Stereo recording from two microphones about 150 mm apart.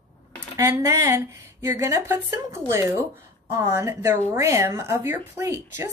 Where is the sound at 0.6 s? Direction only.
20° right (ahead or behind).